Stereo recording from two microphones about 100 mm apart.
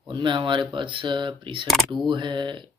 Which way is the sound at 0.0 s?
55° right (ahead or behind).